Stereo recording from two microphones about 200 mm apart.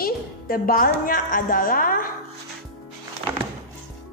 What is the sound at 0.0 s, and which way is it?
A woman's voice, 45° left (ahead or behind).